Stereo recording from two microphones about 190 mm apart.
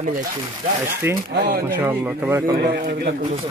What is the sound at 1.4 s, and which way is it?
Speech, 50° right (ahead or behind).